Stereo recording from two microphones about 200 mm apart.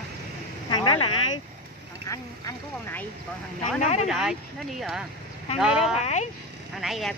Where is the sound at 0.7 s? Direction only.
25° left (ahead or behind).